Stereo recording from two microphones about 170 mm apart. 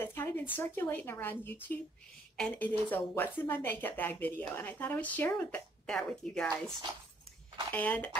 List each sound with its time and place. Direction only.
0.0 s speech: 15° left (ahead or behind)
7.7 s speech: 10° left (ahead or behind)